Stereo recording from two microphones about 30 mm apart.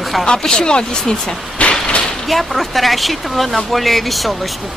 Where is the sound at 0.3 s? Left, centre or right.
Left.